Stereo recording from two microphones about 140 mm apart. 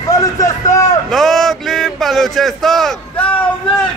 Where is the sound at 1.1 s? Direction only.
Centre (ahead or behind).